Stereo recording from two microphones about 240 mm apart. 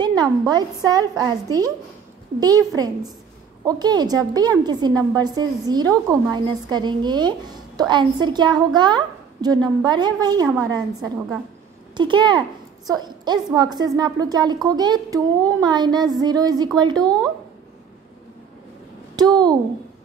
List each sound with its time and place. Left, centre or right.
0.0 s a woman's voice: centre
19.1 s speech: centre